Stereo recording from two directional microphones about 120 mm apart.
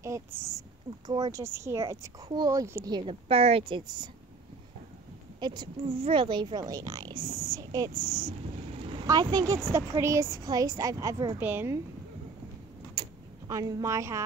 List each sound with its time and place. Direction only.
0.0 s a woman's voice: 25° right (ahead or behind)
1.0 s a woman's voice: 35° right (ahead or behind)
1.4 s a woman's voice: 20° right (ahead or behind)
2.9 s a woman's voice: 50° right (ahead or behind)
5.4 s a woman's voice: 40° right (ahead or behind)
9.0 s a woman's voice: 30° right (ahead or behind)
11.3 s speech: 15° right (ahead or behind)
13.5 s a woman's voice: 30° right (ahead or behind)